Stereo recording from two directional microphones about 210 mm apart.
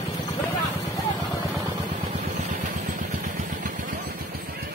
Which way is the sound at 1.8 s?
35° right (ahead or behind).